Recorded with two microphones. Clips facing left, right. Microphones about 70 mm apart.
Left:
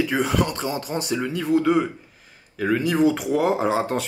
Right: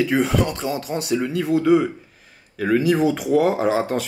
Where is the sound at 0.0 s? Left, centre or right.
Centre.